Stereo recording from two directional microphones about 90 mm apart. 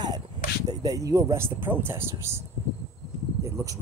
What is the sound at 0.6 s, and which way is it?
Speech, 40° right (ahead or behind).